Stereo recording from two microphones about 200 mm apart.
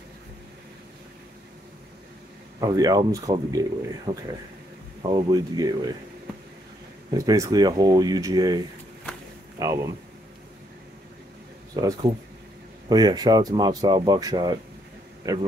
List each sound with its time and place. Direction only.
2.6 s speech: 20° right (ahead or behind)
7.2 s speech: 15° right (ahead or behind)
11.7 s speech: 15° right (ahead or behind)